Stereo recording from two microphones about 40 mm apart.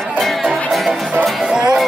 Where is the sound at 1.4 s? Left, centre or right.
Centre.